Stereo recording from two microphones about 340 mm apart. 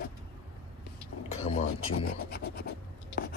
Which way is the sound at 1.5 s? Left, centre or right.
Left.